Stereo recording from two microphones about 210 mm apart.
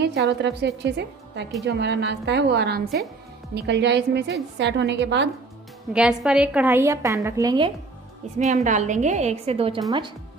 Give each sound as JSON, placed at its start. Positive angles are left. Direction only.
{"t": 0.3, "sound": "a woman's voice", "side_deg": -55}
{"t": 5.9, "sound": "a woman's voice", "side_deg": -5}
{"t": 8.4, "sound": "a woman's voice", "side_deg": -35}